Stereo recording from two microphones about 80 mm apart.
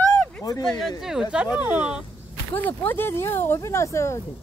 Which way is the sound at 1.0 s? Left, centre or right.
Centre.